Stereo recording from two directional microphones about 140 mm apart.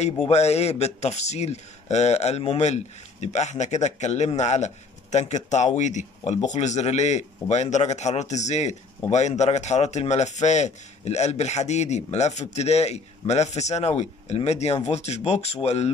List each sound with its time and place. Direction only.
0.0 s speech: 50° left (ahead or behind)